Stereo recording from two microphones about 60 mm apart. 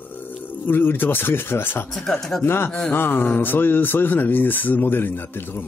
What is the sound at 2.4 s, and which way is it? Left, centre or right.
Mantra, left.